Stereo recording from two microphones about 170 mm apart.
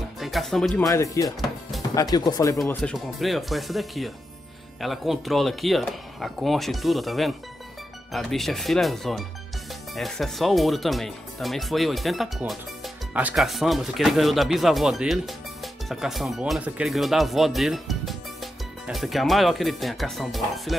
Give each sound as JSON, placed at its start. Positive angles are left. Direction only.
{"t": 0.2, "sound": "speech", "side_deg": 0}
{"t": 0.8, "sound": "speech", "side_deg": 20}
{"t": 2.7, "sound": "speech", "side_deg": 5}